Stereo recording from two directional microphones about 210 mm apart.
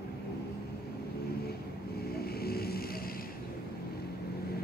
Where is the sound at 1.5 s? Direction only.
50° left (ahead or behind).